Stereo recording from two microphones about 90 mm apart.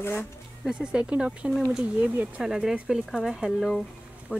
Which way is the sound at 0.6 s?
10° right (ahead or behind).